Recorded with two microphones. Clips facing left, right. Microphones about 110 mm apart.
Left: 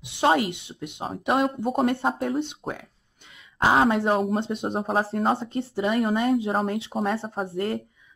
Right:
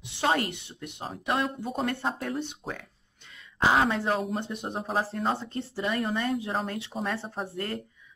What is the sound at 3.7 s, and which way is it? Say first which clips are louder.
Speech: left 5 dB; 30° left (ahead or behind).